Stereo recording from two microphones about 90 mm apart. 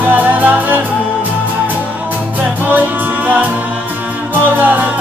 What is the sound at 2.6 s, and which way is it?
Music, 20° right (ahead or behind).